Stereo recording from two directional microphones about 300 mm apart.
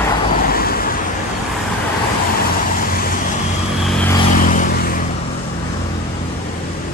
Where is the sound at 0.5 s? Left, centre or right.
Left.